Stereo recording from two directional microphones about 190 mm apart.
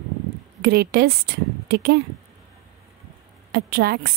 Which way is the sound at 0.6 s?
55° right (ahead or behind).